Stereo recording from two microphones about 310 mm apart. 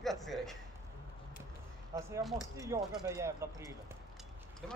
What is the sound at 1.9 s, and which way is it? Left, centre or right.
Speech, centre.